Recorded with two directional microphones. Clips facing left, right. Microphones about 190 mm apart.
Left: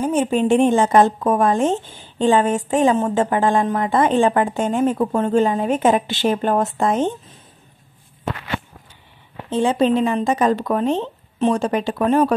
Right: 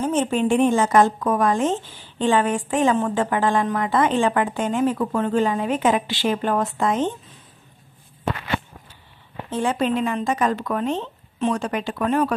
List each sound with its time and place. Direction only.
0.0 s speech: 10° left (ahead or behind); by 1.8 s 30° left (ahead or behind)
1.9 s a sound: 50° left (ahead or behind)
2.2 s speech: 25° left (ahead or behind)
5.7 s a woman's voice: 45° left (ahead or behind)
9.5 s speech: 20° left (ahead or behind)